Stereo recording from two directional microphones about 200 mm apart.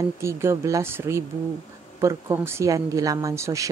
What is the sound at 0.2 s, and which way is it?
Speech, 15° right (ahead or behind).